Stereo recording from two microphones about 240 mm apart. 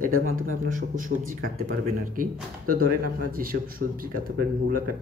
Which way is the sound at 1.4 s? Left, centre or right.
Right.